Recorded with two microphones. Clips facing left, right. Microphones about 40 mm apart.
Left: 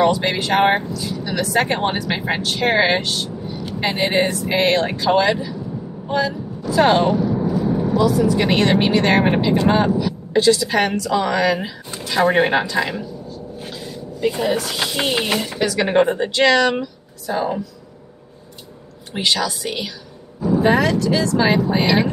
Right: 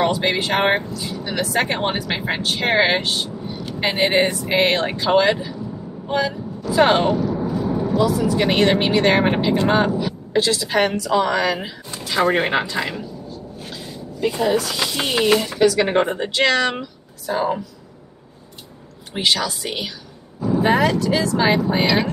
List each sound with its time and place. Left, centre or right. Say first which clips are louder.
0.0 s speech: left 2 dB; centre
2.4 s speech: even; centre
14.2 s speech: even; centre
14.5 s speech: right 1 dB; centre
19.1 s speech: even; centre